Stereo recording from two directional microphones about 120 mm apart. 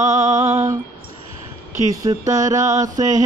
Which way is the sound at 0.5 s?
25° right (ahead or behind).